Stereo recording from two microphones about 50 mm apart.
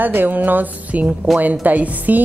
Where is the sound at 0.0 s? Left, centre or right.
Right.